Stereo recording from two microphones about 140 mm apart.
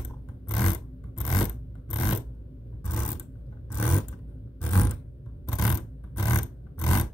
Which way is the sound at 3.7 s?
15° left (ahead or behind).